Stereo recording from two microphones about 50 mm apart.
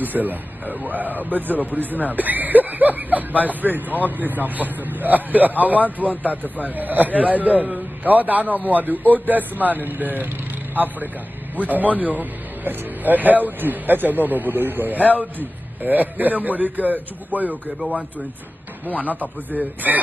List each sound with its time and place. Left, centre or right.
0.0 s speech: right
18.9 s speech: right